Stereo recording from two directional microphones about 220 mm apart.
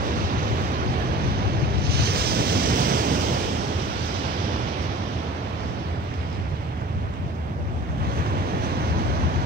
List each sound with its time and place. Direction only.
1.9 s waves: 45° right (ahead or behind)